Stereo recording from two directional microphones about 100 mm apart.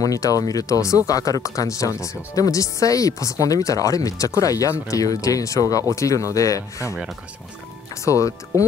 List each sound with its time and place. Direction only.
0.0 s speech: 35° left (ahead or behind)
8.0 s speech: 30° left (ahead or behind)